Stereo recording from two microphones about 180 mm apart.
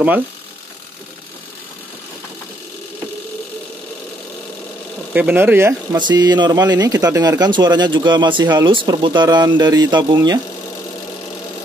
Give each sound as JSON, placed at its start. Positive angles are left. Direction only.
{"t": 5.1, "sound": "speech", "side_deg": -10}
{"t": 5.9, "sound": "speech", "side_deg": -25}